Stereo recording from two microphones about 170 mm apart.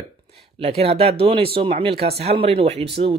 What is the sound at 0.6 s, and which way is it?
Speech, 35° right (ahead or behind).